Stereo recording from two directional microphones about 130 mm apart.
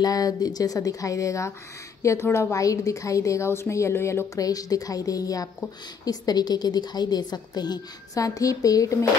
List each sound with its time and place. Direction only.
0.0 s a woman's voice: 30° left (ahead or behind)